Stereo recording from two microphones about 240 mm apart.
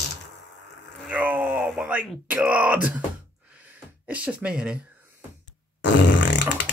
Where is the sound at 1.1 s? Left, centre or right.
Centre.